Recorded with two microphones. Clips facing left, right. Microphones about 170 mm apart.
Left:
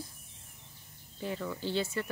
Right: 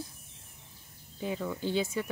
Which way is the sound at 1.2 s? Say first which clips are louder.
Right 2 dB; 10° right (ahead or behind).